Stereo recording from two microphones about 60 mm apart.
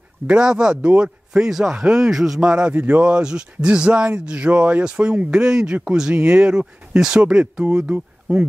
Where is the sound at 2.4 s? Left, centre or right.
Centre.